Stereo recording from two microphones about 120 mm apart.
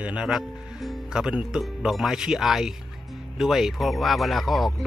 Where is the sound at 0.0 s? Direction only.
10° right (ahead or behind).